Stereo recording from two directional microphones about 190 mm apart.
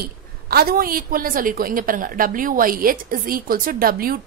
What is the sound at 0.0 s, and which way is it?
A woman's voice, 55° right (ahead or behind).